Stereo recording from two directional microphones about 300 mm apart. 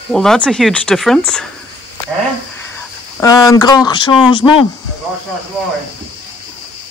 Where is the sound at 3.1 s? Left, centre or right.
Centre.